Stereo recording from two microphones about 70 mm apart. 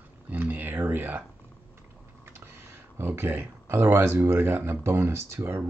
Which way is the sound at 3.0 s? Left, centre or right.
Right.